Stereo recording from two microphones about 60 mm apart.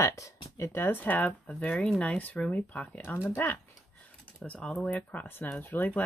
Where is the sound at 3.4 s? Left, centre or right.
Left.